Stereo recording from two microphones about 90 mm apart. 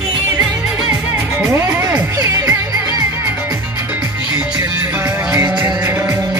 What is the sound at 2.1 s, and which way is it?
Music, 40° right (ahead or behind).